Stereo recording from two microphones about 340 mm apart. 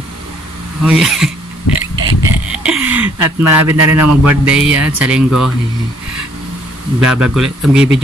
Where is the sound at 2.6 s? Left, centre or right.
Centre.